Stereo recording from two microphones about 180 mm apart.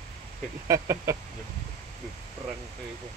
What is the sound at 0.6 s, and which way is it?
Speech, 15° right (ahead or behind).